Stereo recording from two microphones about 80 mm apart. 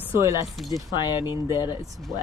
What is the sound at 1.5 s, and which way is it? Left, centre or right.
Speech, right.